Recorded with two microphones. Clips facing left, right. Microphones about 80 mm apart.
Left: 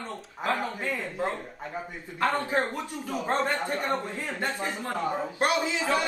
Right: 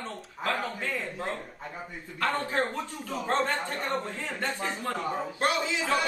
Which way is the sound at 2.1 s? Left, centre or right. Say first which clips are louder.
Left 2 dB; left.